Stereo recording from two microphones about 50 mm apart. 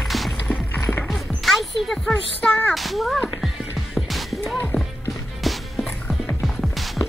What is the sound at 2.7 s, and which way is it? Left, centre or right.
Speech, centre.